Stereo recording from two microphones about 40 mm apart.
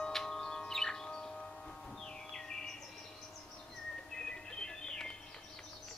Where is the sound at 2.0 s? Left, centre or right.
Centre.